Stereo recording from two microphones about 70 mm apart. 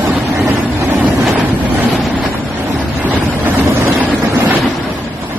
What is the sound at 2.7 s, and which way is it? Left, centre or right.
Boat, right.